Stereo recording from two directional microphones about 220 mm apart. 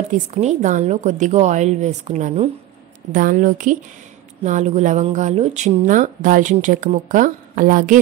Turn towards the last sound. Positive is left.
turn(degrees=-40)  # may be behind; listen again after turning